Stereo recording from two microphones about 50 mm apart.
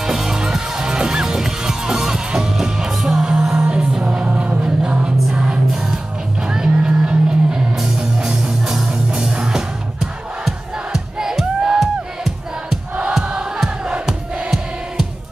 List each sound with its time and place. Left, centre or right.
0.0 s music: centre
13.1 s music: centre